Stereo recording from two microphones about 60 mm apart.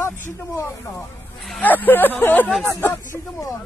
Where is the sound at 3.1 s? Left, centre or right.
Left.